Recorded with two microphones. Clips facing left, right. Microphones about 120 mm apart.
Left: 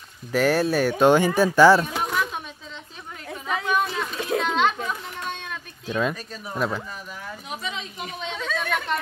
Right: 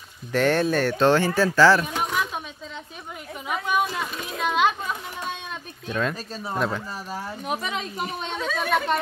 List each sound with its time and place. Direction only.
0.3 s speech: 5° left (ahead or behind)
2.0 s a sound: centre (ahead or behind)
3.4 s a sound: 10° right (ahead or behind)
5.9 s speech: 10° left (ahead or behind)
6.1 s speech: 30° right (ahead or behind)
7.4 s a woman's voice: 55° right (ahead or behind)
8.0 s a woman's voice: 40° right (ahead or behind)
8.4 s speech: 5° right (ahead or behind)